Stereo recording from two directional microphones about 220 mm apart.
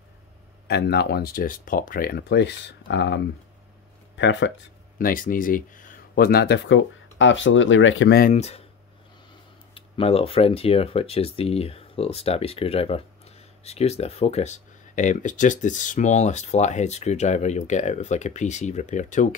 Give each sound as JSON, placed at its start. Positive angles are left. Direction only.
{"t": 0.7, "sound": "speech", "side_deg": 45}
{"t": 4.9, "sound": "speech", "side_deg": 40}
{"t": 8.2, "sound": "speech", "side_deg": 30}
{"t": 9.8, "sound": "speech", "side_deg": 25}